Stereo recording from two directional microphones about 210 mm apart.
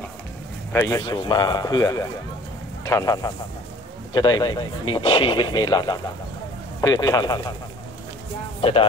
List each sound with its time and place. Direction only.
0.7 s a man's voice: 15° left (ahead or behind)
8.5 s speech: 25° left (ahead or behind)